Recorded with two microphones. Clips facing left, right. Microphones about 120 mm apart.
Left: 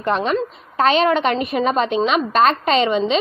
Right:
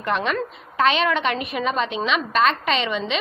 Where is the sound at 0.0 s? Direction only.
35° left (ahead or behind).